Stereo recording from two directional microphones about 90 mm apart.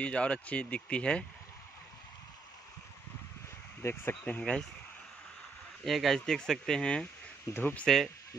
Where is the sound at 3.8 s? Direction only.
25° left (ahead or behind).